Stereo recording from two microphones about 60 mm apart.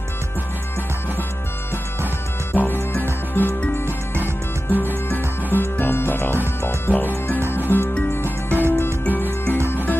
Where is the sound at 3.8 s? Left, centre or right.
Right.